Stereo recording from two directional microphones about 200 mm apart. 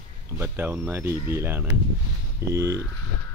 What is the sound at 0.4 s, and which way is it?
Speech, 10° right (ahead or behind).